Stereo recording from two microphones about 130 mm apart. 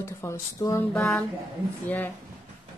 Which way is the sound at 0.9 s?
Centre (ahead or behind).